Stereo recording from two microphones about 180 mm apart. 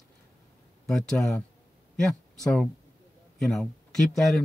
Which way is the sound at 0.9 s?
Centre (ahead or behind).